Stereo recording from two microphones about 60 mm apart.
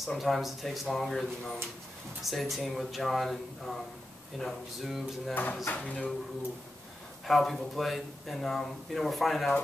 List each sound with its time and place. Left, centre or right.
0.0 s speech: centre
4.7 s speech: centre
5.3 s speech: left
7.2 s speech: centre